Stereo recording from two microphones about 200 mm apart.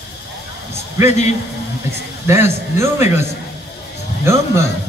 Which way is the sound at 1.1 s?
35° left (ahead or behind).